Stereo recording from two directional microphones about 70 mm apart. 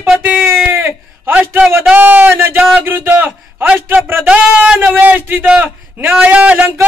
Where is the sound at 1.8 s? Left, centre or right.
Right.